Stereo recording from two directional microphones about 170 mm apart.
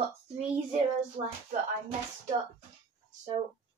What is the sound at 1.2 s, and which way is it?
Speech, 40° right (ahead or behind).